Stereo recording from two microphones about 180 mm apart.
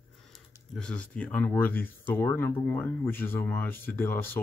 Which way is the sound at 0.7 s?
5° left (ahead or behind).